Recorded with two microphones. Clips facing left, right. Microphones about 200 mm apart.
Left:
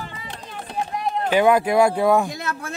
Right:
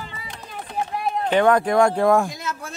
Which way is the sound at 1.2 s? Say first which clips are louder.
Left 1 dB; 5° left (ahead or behind).